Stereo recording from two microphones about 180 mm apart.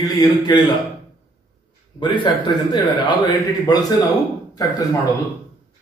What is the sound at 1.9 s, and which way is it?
A man's voice, 25° left (ahead or behind).